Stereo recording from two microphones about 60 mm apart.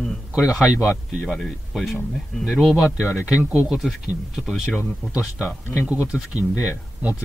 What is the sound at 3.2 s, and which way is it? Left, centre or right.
Speech, centre.